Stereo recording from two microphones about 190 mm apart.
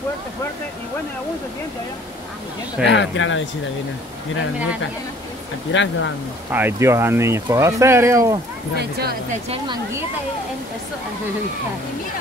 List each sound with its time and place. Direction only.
2.8 s speech: 70° left (ahead or behind); by 3.4 s 90° left
5.7 s speech: 75° left (ahead or behind)
6.5 s speech: 10° right (ahead or behind)
8.7 s speech: 55° right (ahead or behind)